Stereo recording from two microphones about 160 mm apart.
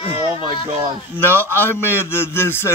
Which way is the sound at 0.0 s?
35° left (ahead or behind).